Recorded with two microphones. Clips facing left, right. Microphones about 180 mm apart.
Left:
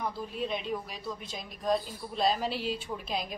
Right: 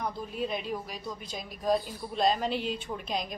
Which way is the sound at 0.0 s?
Centre (ahead or behind).